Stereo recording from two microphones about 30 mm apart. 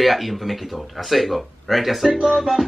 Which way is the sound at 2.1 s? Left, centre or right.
Right.